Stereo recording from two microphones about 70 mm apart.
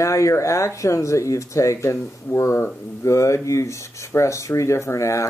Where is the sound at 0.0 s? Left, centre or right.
Left.